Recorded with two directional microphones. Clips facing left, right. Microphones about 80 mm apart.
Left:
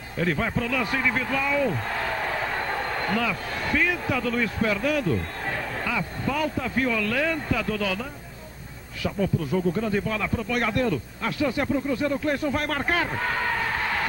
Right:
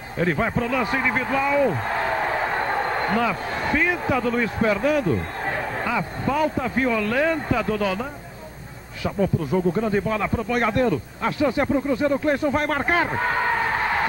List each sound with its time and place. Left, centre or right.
0.2 s speech: right
9.0 s speech: right